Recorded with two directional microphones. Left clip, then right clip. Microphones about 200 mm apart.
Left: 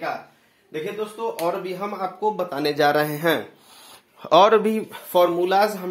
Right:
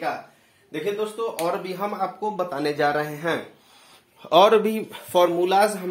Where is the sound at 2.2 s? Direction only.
Centre (ahead or behind).